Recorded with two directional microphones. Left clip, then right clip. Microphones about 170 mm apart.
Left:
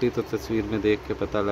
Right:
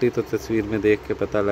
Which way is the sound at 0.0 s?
15° right (ahead or behind).